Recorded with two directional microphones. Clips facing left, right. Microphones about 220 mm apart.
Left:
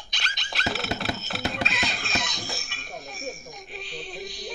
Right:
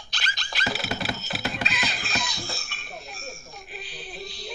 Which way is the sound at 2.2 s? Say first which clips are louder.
Left 1 dB; 20° left (ahead or behind).